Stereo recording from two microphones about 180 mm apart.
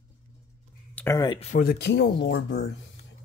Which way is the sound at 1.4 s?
40° left (ahead or behind).